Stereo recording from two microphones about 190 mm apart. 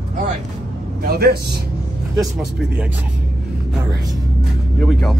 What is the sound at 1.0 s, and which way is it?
Speech, 55° right (ahead or behind).